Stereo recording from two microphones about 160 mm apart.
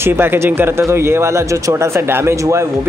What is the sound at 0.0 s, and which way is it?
Speech, 15° right (ahead or behind).